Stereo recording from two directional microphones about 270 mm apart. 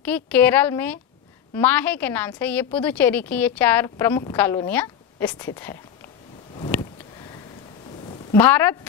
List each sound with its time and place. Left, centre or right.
0.0 s a woman's voice: centre
6.5 s a sound: centre
8.3 s a woman's voice: centre